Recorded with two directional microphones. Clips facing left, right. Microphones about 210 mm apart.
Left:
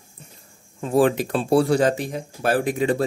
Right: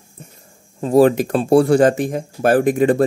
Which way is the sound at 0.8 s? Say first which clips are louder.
Right 6 dB; 40° right (ahead or behind).